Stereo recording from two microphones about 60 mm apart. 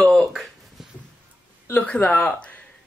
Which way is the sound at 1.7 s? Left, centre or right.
Left.